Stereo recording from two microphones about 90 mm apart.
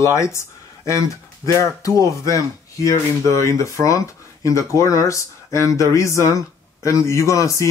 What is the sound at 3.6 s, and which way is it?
Speech, 40° left (ahead or behind).